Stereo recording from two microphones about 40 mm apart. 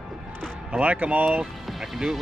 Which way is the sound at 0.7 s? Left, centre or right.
Right.